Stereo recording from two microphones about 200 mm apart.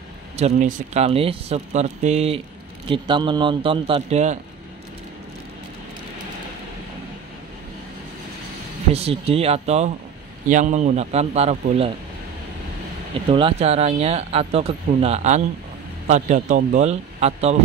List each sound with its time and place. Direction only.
0.4 s a man's voice: 40° right (ahead or behind)
8.9 s a man's voice: 30° right (ahead or behind)
13.3 s speech: 25° right (ahead or behind)